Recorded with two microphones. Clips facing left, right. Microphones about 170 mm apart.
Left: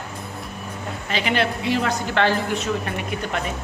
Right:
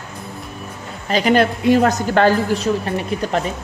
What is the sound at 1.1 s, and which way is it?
A woman's voice, 40° right (ahead or behind).